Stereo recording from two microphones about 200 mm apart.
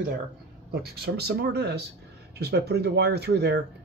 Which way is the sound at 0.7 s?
55° right (ahead or behind).